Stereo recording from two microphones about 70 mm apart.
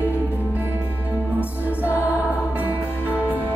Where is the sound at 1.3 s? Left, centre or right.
Left.